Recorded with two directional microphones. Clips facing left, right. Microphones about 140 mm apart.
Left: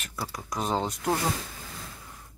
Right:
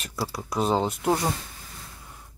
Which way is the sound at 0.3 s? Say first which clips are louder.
Right 6 dB; 10° right (ahead or behind).